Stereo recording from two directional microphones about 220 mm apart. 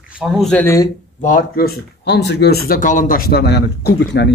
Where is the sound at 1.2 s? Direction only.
40° left (ahead or behind).